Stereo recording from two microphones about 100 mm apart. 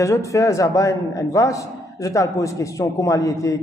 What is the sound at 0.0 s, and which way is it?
A man's voice, 30° left (ahead or behind).